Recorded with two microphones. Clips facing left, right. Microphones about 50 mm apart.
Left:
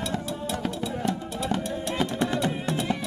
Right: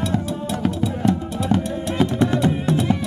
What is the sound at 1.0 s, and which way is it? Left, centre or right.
Music, right.